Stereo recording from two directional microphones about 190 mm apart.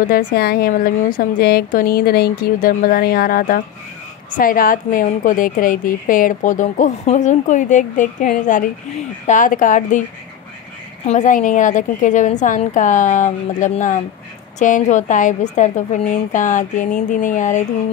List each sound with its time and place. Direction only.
0.0 s speech: 45° left (ahead or behind)
11.1 s a woman's voice: 40° left (ahead or behind)